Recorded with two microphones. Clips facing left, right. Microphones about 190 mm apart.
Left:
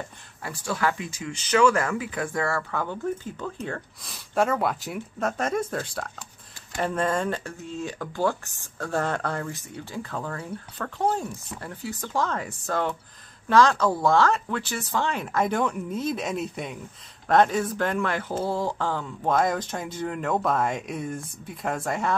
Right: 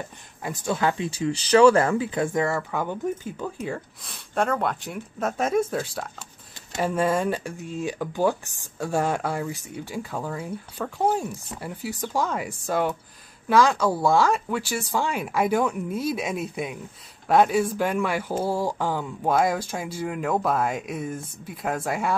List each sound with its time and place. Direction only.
0.4 s speech: 20° right (ahead or behind)